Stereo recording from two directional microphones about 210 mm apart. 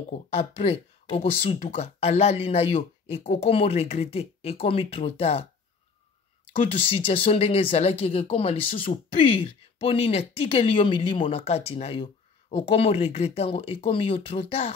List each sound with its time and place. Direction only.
0.1 s speech: 30° left (ahead or behind)
6.5 s speech: 25° left (ahead or behind)